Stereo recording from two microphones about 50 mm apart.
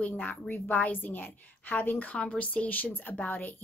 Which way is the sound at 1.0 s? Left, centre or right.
Left.